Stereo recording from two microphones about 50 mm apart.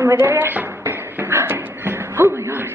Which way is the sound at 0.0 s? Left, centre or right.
Right.